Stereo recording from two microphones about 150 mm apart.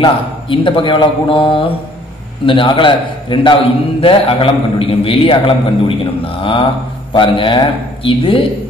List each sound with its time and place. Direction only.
0.0 s a man's voice: 35° left (ahead or behind)